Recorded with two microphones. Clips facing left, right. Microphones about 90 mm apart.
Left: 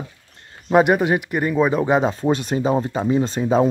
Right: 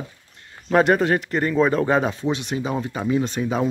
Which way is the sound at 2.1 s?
40° left (ahead or behind).